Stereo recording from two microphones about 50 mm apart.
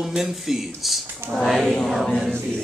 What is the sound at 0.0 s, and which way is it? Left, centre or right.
A man's voice, centre.